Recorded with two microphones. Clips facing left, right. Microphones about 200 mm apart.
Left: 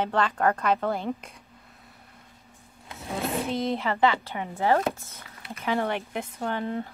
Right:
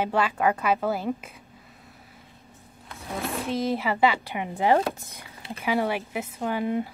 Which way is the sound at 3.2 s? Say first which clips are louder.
Right 1 dB; centre (ahead or behind).